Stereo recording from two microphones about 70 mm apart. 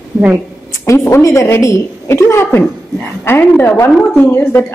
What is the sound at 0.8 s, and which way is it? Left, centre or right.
A woman's voice, left.